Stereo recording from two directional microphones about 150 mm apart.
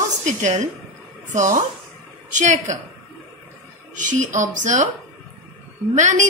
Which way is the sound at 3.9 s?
55° right (ahead or behind).